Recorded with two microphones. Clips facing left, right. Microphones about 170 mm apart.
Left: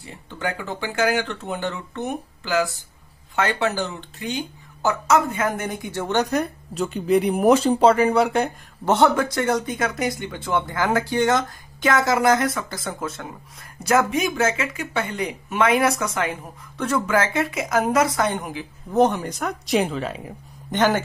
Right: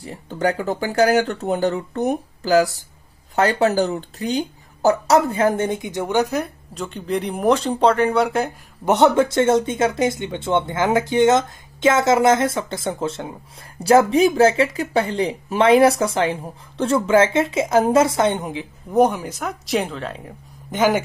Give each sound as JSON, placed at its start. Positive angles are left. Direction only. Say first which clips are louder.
{"t": 0.0, "sound": "speech", "louder": "right 7 dB", "side_deg": -35}
{"t": 8.8, "sound": "speech", "louder": "right 3 dB", "side_deg": -20}
{"t": 20.7, "sound": "speech", "louder": "right 2 dB", "side_deg": -10}